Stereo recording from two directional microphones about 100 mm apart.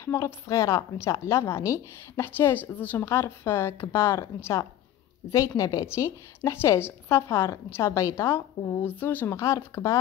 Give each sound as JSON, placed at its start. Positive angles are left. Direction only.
{"t": 0.0, "sound": "a woman's voice", "side_deg": 30}